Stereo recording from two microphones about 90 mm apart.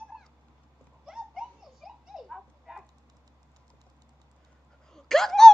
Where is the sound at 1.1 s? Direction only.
5° right (ahead or behind).